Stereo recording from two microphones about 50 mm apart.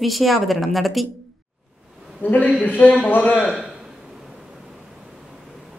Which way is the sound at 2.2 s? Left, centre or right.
Left.